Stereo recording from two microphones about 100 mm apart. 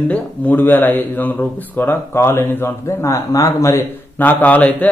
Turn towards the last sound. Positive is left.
turn(degrees=15)  # may be behind; listen again after turning